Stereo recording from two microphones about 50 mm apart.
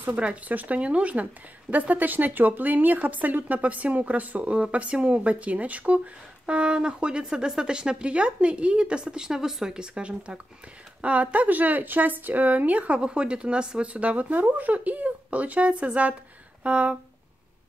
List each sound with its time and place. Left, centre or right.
0.1 s speech: right